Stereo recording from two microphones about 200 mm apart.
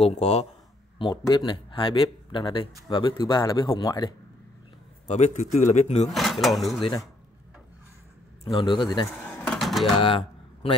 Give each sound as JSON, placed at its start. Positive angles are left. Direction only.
{"t": 0.0, "sound": "speech", "side_deg": 30}
{"t": 5.0, "sound": "speech", "side_deg": 35}
{"t": 6.1, "sound": "speech", "side_deg": 0}
{"t": 6.8, "sound": "speech", "side_deg": 20}
{"t": 8.5, "sound": "speech", "side_deg": 25}
{"t": 9.2, "sound": "a sound", "side_deg": 5}
{"t": 9.9, "sound": "a sound", "side_deg": 25}